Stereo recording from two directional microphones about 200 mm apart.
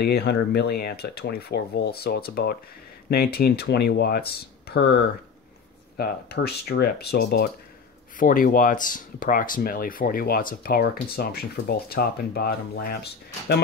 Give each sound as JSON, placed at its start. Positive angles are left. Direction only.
{"t": 0.0, "sound": "speech", "side_deg": 55}
{"t": 5.9, "sound": "speech", "side_deg": 50}